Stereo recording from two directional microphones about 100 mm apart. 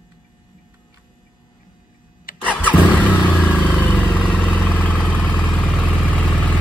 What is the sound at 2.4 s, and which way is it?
Vehicle, 15° left (ahead or behind).